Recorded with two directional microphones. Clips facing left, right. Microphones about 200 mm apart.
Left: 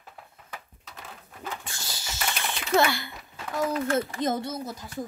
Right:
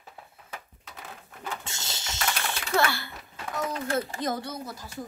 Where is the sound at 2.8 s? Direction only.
15° left (ahead or behind).